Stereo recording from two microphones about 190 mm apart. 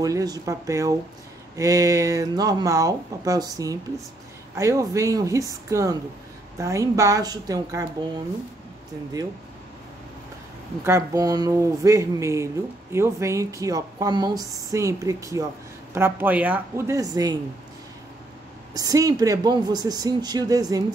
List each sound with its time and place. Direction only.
0.0 s speech: 20° right (ahead or behind)
10.8 s speech: 15° right (ahead or behind)
18.7 s speech: 20° right (ahead or behind)